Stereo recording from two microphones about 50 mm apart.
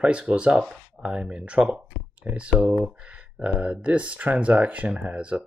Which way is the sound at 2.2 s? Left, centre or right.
Right.